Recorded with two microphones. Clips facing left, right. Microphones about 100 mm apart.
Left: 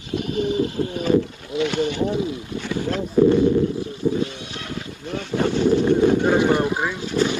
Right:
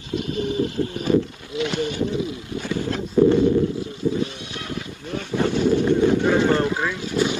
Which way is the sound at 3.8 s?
20° right (ahead or behind).